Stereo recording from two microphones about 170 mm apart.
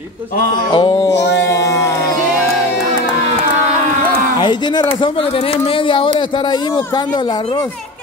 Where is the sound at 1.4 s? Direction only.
20° left (ahead or behind).